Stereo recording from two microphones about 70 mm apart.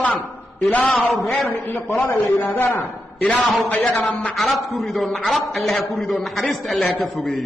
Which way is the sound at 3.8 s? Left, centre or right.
Centre.